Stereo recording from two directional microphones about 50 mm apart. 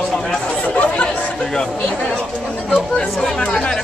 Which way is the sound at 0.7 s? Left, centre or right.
Left.